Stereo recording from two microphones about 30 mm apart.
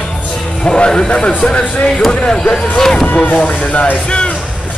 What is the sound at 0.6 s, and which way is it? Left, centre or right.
Music, left.